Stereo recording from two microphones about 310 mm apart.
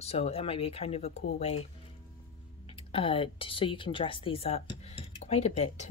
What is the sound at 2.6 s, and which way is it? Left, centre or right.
Speech, centre.